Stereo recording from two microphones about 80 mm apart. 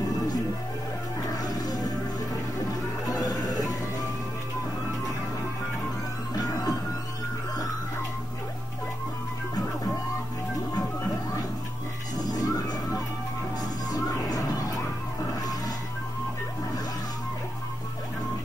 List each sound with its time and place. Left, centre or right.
1.3 s music: left
3.1 s music: left
6.3 s music: left
12.2 s music: left
13.8 s music: left